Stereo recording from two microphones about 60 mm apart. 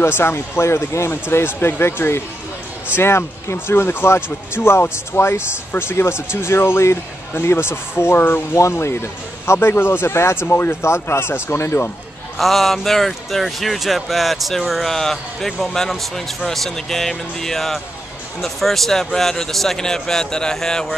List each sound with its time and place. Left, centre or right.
0.0 s speech: left
8.5 s speech: left
12.4 s a man's voice: centre